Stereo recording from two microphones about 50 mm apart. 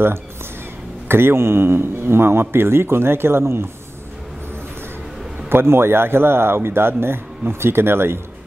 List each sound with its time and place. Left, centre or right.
1.0 s speech: right
5.5 s speech: right